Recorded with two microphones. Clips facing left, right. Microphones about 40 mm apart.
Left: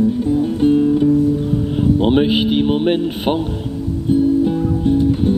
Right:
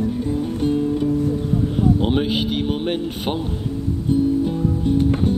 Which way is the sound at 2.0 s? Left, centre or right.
Left.